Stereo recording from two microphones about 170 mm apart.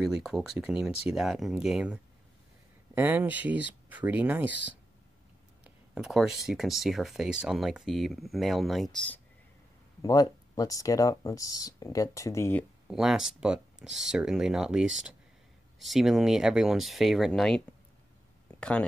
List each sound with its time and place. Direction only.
0.0 s speech: centre (ahead or behind)
10.0 s speech: 20° left (ahead or behind)
12.8 s speech: 5° right (ahead or behind)